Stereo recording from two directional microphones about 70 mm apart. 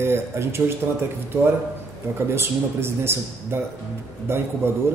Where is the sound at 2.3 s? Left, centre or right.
Right.